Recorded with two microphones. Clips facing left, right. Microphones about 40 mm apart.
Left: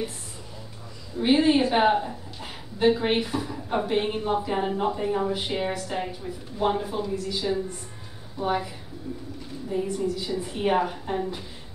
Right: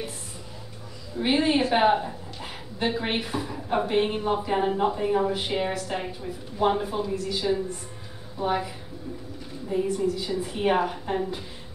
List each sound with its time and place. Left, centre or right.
1.2 s a woman's voice: centre
6.6 s a woman's voice: centre
9.7 s a woman's voice: centre